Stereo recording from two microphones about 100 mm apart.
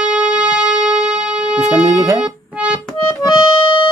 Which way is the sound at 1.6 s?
30° right (ahead or behind).